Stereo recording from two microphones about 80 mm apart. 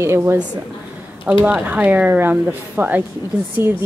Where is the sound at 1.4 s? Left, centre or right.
Centre.